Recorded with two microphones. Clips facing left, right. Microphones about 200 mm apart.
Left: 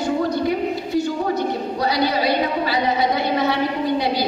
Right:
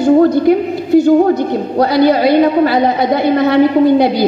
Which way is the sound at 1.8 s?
55° right (ahead or behind).